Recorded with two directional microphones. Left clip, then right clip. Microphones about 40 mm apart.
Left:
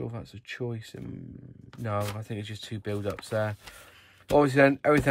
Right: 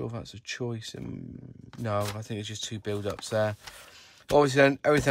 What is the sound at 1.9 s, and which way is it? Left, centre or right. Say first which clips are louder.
Speech: right 1 dB; right.